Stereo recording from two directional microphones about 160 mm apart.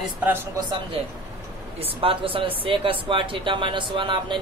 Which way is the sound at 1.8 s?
35° right (ahead or behind).